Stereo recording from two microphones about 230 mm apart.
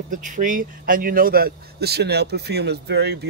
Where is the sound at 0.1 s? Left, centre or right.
Right.